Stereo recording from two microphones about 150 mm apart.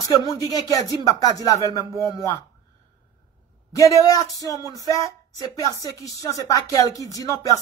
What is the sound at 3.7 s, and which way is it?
Speech, 20° left (ahead or behind).